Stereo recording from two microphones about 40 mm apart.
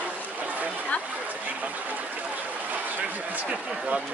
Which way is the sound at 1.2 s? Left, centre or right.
Right.